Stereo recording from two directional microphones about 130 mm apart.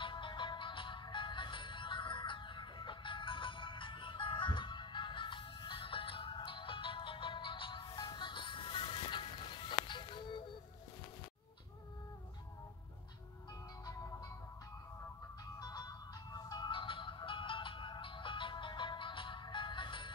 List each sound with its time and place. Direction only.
0.0 s music: 40° left (ahead or behind)
15.6 s music: 30° left (ahead or behind)